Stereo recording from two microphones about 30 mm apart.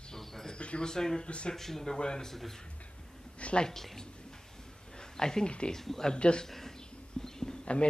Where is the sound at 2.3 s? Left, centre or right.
Centre.